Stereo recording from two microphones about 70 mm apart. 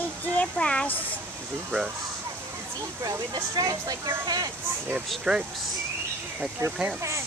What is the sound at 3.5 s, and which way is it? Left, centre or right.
Speech, right.